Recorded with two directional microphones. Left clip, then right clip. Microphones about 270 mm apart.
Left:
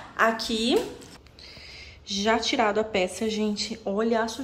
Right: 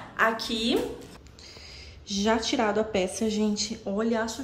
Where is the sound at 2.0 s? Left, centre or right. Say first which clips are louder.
Left 2 dB; centre.